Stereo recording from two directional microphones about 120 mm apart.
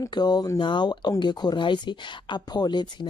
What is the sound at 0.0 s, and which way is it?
Speech, 35° left (ahead or behind).